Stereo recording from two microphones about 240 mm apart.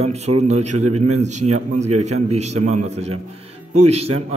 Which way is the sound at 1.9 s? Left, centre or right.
Right.